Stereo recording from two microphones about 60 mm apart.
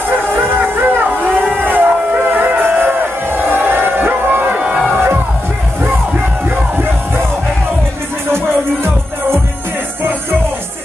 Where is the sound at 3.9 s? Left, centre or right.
Right.